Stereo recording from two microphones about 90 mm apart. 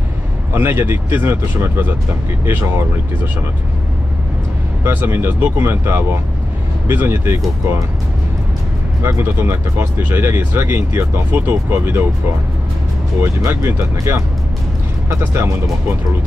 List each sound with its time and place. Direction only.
0.5 s speech: 25° right (ahead or behind)
4.8 s speech: 25° right (ahead or behind)
9.0 s speech: 25° right (ahead or behind)
13.2 s speech: 25° right (ahead or behind)